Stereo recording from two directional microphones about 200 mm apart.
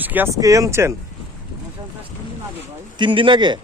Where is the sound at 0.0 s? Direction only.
10° right (ahead or behind).